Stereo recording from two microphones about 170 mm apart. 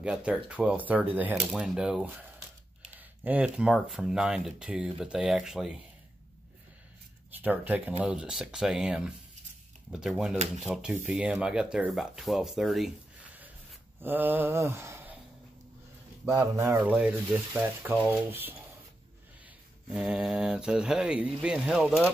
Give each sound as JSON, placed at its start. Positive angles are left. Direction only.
{"t": 0.0, "sound": "mantra", "side_deg": -5}
{"t": 1.5, "sound": "speech", "side_deg": -5}
{"t": 3.3, "sound": "speech", "side_deg": -5}
{"t": 7.3, "sound": "mantra", "side_deg": -10}
{"t": 8.0, "sound": "speech", "side_deg": -5}
{"t": 14.0, "sound": "mantra", "side_deg": -10}
{"t": 16.3, "sound": "mantra", "side_deg": -20}
{"t": 19.9, "sound": "speech", "side_deg": -5}